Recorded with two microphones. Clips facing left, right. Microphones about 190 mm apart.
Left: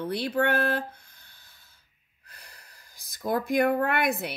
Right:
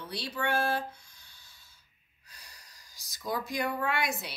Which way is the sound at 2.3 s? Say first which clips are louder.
Left 4 dB; 55° left (ahead or behind).